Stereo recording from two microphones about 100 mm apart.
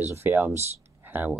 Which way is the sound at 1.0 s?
20° right (ahead or behind).